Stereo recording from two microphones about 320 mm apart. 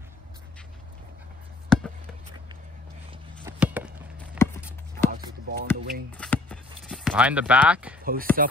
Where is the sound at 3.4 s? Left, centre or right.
Centre.